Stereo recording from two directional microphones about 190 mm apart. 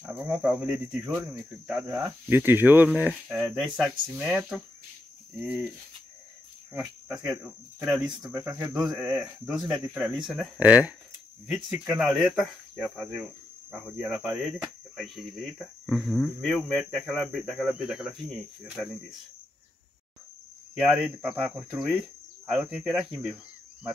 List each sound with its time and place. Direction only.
0.0 s speech: 5° right (ahead or behind)
6.7 s speech: 10° right (ahead or behind)
8.3 s speech: 15° right (ahead or behind)
8.7 s speech: 5° right (ahead or behind)
9.7 s speech: 15° right (ahead or behind)
10.0 s speech: 5° right (ahead or behind)
20.8 s speech: 5° right (ahead or behind)